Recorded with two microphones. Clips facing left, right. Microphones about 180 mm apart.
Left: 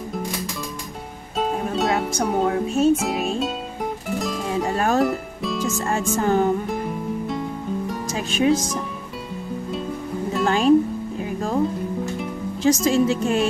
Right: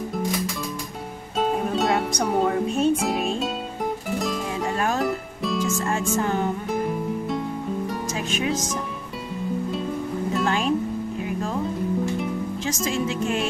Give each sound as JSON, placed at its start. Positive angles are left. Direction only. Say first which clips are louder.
{"t": 1.4, "sound": "music", "louder": "even", "side_deg": 0}
{"t": 4.7, "sound": "music", "louder": "left 5 dB", "side_deg": 40}
{"t": 5.0, "sound": "music", "louder": "left 3 dB", "side_deg": 0}
{"t": 5.9, "sound": "speech", "louder": "left 6 dB", "side_deg": 40}
{"t": 8.1, "sound": "music", "louder": "left 9 dB", "side_deg": 35}
{"t": 10.4, "sound": "music", "louder": "left 6 dB", "side_deg": 35}
{"t": 12.6, "sound": "speech", "louder": "left 10 dB", "side_deg": 40}